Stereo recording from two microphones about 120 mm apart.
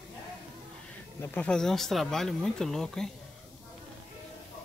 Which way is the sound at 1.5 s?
5° left (ahead or behind).